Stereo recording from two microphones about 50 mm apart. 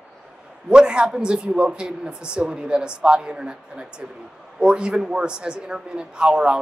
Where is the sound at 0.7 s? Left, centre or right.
Centre.